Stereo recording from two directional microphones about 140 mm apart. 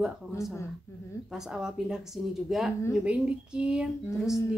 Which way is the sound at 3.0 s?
10° right (ahead or behind).